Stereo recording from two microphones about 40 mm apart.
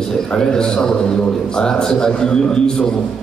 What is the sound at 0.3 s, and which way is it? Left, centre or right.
A man's voice, centre.